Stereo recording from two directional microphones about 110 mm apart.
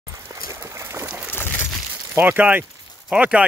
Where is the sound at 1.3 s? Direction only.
20° left (ahead or behind).